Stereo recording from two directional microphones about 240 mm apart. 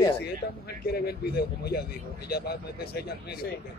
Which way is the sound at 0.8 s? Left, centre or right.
Left.